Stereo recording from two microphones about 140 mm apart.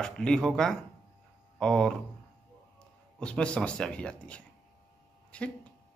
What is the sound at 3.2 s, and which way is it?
Speech, 5° left (ahead or behind).